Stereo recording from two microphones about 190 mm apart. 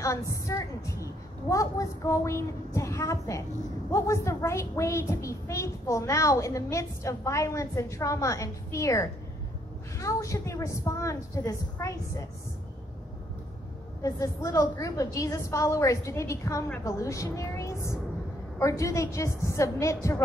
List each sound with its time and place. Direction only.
0.0 s a woman's voice: 15° left (ahead or behind)
14.0 s a woman's voice: 15° left (ahead or behind)